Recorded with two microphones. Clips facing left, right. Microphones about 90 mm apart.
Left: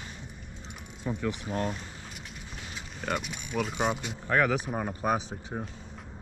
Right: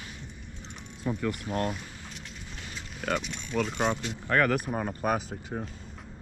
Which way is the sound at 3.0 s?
5° left (ahead or behind).